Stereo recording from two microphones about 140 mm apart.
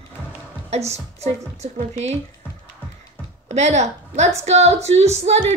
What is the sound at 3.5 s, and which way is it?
A woman's voice, 55° right (ahead or behind).